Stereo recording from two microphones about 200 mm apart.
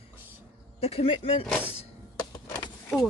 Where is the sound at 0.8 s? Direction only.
30° left (ahead or behind).